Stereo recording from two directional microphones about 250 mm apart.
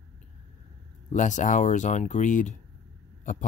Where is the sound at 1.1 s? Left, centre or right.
Left.